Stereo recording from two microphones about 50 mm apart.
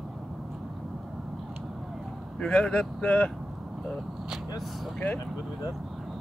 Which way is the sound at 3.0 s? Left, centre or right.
Left.